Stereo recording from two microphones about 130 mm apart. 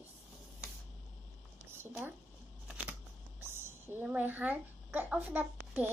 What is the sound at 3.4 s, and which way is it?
A woman's voice, 15° right (ahead or behind).